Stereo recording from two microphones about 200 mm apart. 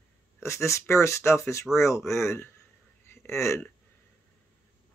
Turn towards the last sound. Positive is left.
turn(degrees=15)  # may be behind; listen again after turning